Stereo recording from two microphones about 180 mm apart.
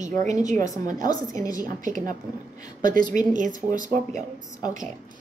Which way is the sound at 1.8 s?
45° right (ahead or behind).